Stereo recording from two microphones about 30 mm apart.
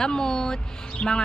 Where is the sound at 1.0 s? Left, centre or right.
Left.